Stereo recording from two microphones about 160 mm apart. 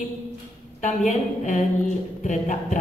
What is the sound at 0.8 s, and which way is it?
A woman's voice, 55° left (ahead or behind).